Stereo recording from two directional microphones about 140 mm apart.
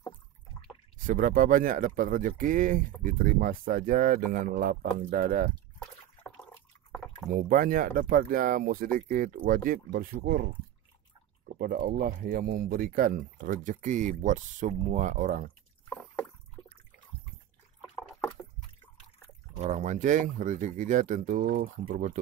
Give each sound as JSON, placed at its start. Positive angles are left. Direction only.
{"t": 1.0, "sound": "speech", "side_deg": -70}
{"t": 7.3, "sound": "speech", "side_deg": -85}
{"t": 19.6, "sound": "speech", "side_deg": -55}